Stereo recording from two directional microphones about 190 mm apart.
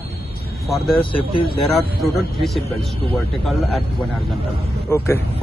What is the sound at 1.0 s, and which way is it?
Speech, 25° left (ahead or behind).